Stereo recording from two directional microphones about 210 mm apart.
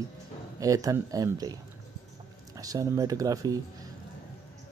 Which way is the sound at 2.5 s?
15° right (ahead or behind).